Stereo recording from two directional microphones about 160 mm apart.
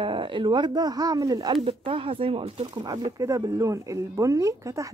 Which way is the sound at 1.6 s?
35° right (ahead or behind).